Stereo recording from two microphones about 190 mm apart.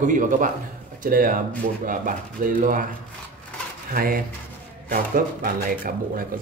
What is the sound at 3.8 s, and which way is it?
Speech, 50° right (ahead or behind).